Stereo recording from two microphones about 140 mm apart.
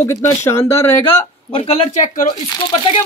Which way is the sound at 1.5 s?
45° left (ahead or behind).